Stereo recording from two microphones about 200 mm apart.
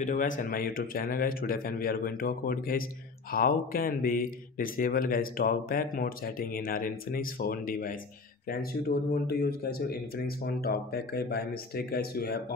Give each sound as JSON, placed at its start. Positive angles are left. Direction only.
{"t": 0.0, "sound": "speech", "side_deg": 40}